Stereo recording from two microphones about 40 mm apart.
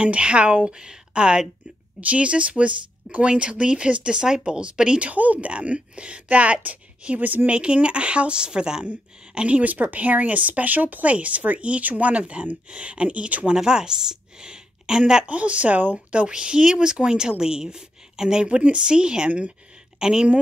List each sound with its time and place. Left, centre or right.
0.0 s speech: right
5.1 s speech: right
5.5 s speech: right
7.2 s speech: right
7.4 s speech: right
8.8 s speech: right
9.6 s speech: right
13.6 s speech: centre
15.2 s speech: right
16.3 s a woman's voice: right
18.4 s speech: right